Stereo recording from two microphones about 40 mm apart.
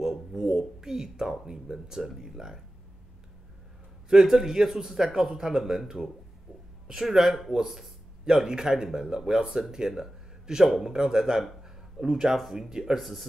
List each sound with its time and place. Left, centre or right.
0.0 s speech: centre
4.1 s speech: centre
6.9 s a man's voice: centre
13.0 s speech: centre